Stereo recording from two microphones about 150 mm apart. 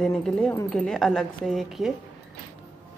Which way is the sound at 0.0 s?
5° left (ahead or behind).